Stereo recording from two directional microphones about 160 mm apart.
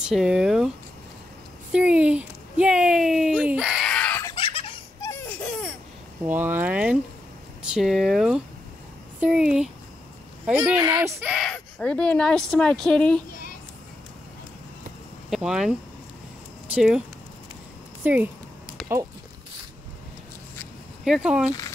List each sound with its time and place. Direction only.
0.0 s speech: 5° right (ahead or behind)
1.7 s a sound: 5° right (ahead or behind)
4.4 s giggle: 35° left (ahead or behind)
6.2 s speech: 10° right (ahead or behind)
10.8 s speech: 20° right (ahead or behind)
11.2 s speech: centre (ahead or behind)
15.2 s speech: centre (ahead or behind)
16.7 s speech: 5° right (ahead or behind)
18.0 s speech: 10° right (ahead or behind)
21.0 s speech: 5° right (ahead or behind)